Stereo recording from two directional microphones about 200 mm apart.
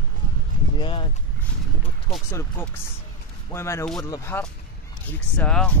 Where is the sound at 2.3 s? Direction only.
15° left (ahead or behind).